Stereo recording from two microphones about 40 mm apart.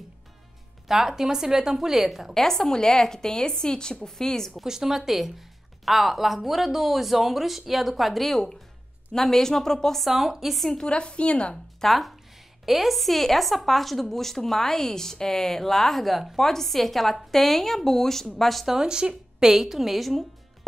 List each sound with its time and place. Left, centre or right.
0.8 s a woman's voice: centre
2.3 s a woman's voice: centre
4.6 s a woman's voice: centre
10.0 s a woman's voice: centre
10.8 s a woman's voice: left
11.8 s a woman's voice: centre
16.3 s a woman's voice: centre
18.7 s speech: centre
19.5 s a woman's voice: centre